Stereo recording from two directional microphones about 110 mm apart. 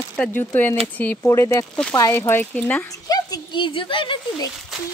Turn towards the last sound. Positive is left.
turn(degrees=50)  # may be behind; listen again after turning